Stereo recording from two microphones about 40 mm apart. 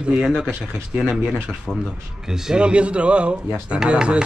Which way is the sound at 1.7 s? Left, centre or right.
Centre.